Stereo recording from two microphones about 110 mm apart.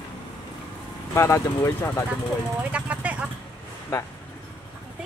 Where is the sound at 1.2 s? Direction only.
25° left (ahead or behind).